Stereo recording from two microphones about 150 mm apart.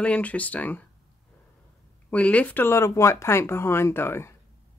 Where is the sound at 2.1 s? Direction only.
10° left (ahead or behind).